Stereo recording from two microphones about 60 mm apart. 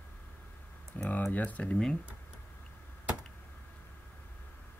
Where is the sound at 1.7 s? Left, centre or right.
Centre.